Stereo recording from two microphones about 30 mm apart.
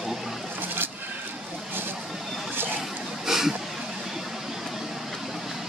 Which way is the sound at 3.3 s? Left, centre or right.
Centre.